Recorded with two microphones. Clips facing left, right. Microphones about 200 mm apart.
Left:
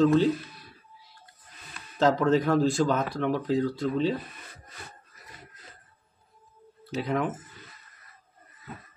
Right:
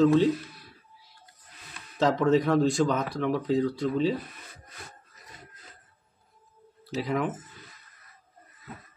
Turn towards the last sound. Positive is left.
turn(degrees=0)  # may be behind; listen again after turning